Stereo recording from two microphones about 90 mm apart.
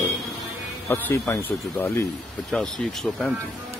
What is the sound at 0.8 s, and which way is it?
Speech, 25° left (ahead or behind).